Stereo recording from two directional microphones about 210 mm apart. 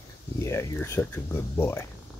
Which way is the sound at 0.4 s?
15° left (ahead or behind).